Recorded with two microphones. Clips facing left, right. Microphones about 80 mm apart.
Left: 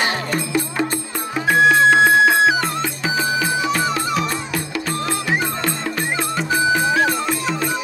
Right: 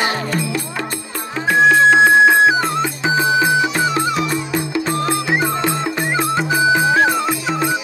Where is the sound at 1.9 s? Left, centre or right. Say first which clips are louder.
Right 3 dB; centre.